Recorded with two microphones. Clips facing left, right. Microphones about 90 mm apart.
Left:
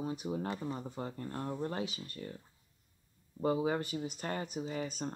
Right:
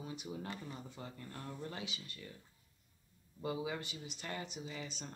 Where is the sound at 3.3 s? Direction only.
40° left (ahead or behind).